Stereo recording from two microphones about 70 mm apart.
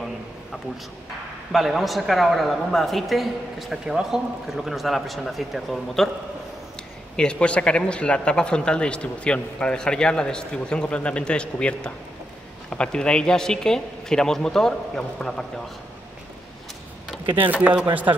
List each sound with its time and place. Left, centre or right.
1.5 s speech: centre
7.2 s speech: centre
17.4 s speech: right